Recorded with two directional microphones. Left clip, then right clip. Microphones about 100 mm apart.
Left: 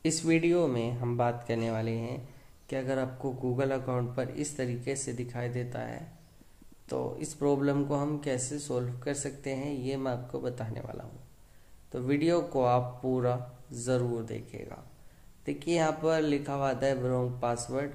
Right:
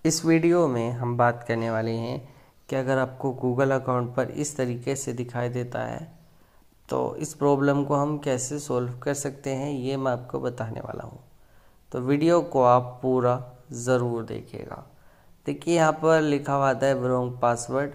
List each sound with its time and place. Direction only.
0.0 s speech: 35° right (ahead or behind)
1.1 s speech: 15° right (ahead or behind)
1.9 s speech: 75° right (ahead or behind)
2.6 s a man's voice: 50° right (ahead or behind); by 17.9 s 30° right (ahead or behind)